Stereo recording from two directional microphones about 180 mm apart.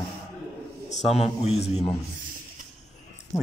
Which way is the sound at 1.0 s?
Centre (ahead or behind).